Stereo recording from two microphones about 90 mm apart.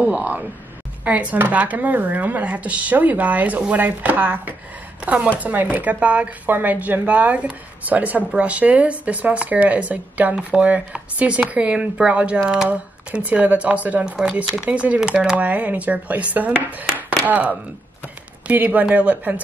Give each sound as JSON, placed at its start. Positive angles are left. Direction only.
{"t": 0.0, "sound": "speech", "side_deg": -15}